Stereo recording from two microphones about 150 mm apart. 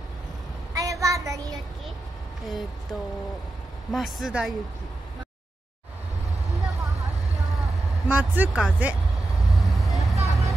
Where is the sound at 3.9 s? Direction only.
Centre (ahead or behind).